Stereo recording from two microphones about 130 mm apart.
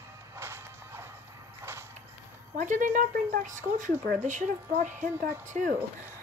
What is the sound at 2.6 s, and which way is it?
Speech, 75° right (ahead or behind).